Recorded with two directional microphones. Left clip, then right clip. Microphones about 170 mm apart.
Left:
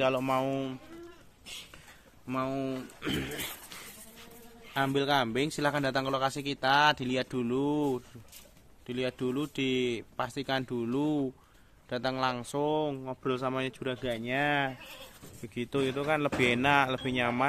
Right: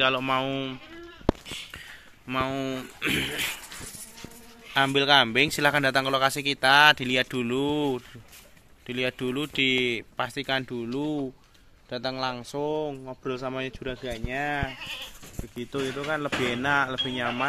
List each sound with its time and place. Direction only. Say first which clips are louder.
0.0 s speech: right 4 dB; centre (ahead or behind)
2.2 s speech: right 5 dB; 5° left (ahead or behind)
4.7 s speech: right 8 dB; centre (ahead or behind)
12.5 s speech: right 2 dB; 15° left (ahead or behind)
14.2 s speech: even; 40° left (ahead or behind)
15.5 s speech: even; 15° left (ahead or behind)